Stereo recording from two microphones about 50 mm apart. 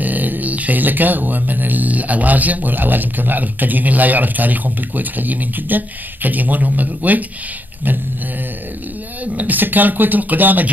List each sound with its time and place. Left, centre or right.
0.0 s speech: right
9.2 s speech: right